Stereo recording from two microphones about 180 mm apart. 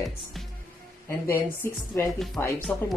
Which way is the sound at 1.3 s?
15° left (ahead or behind).